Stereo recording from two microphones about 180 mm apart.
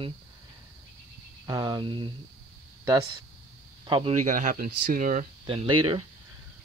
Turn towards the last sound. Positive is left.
turn(degrees=-30)  # may be behind; listen again after turning